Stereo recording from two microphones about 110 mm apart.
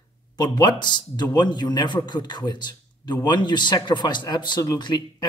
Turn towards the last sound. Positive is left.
turn(degrees=40)  # may be behind; listen again after turning